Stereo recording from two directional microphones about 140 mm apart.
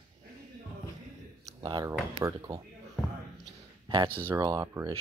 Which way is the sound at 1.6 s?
35° right (ahead or behind).